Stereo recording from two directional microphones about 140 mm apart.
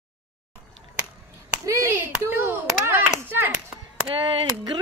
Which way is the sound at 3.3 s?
15° right (ahead or behind).